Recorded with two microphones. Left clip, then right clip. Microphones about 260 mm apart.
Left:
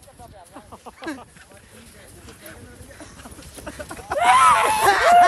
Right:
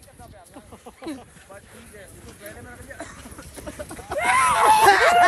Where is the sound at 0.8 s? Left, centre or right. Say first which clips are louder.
Left 3 dB; centre.